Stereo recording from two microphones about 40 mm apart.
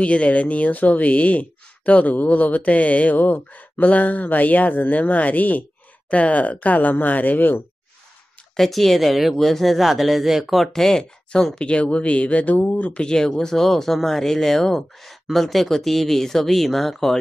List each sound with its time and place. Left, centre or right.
0.0 s speech: left
8.5 s speech: centre
9.4 s speech: centre
10.6 s speech: centre
11.6 s speech: left
12.6 s speech: left
12.9 s speech: centre